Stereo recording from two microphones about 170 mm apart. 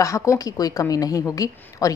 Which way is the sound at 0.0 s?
20° left (ahead or behind).